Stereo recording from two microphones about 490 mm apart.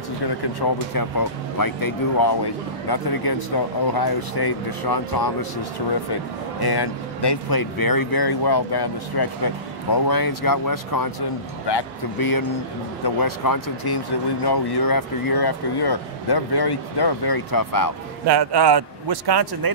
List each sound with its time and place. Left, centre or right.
0.6 s speech: left
18.2 s a man's voice: right